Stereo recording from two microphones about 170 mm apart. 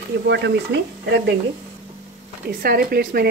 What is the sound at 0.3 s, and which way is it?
Speech, 90° right.